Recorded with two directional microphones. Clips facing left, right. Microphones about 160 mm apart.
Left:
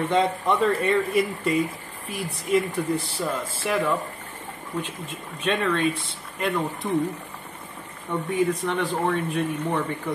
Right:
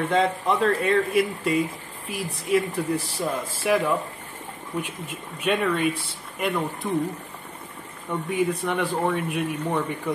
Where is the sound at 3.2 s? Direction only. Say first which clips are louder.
Even; 10° right (ahead or behind).